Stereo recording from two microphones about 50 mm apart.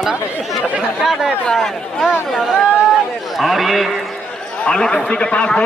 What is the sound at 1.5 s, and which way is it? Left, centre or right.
A man's voice, centre.